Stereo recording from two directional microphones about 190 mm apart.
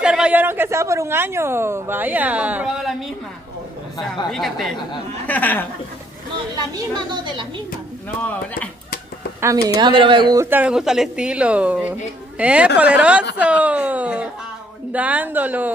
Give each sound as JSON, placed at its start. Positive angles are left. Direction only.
{"t": 0.0, "sound": "a woman's voice", "side_deg": -5}
{"t": 4.3, "sound": "speech", "side_deg": 0}
{"t": 6.3, "sound": "speech", "side_deg": -20}
{"t": 8.2, "sound": "speech", "side_deg": 5}
{"t": 9.4, "sound": "a man's voice", "side_deg": -15}